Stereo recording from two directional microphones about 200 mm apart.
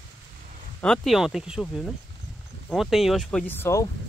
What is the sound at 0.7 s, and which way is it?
Speech, 5° left (ahead or behind).